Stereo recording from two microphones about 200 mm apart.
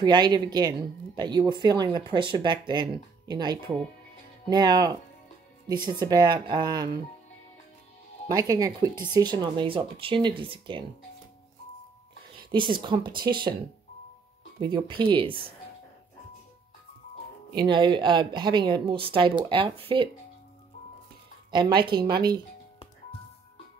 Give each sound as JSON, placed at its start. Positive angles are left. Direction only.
{"t": 0.0, "sound": "speech", "side_deg": -20}
{"t": 8.3, "sound": "speech", "side_deg": -20}
{"t": 12.4, "sound": "speech", "side_deg": -25}
{"t": 14.6, "sound": "speech", "side_deg": -20}
{"t": 17.6, "sound": "speech", "side_deg": -25}
{"t": 21.5, "sound": "speech", "side_deg": -20}